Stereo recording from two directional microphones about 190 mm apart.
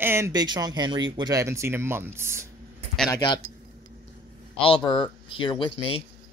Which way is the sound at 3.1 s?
20° left (ahead or behind).